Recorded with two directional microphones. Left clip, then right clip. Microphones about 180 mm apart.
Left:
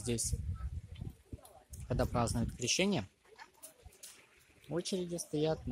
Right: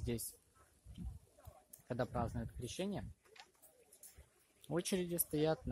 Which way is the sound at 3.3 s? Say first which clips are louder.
Left 6 dB; 25° right (ahead or behind).